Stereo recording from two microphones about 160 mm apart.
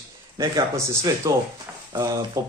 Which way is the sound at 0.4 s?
20° right (ahead or behind).